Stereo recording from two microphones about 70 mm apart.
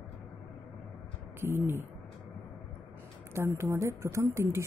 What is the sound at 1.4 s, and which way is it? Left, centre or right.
Speech, right.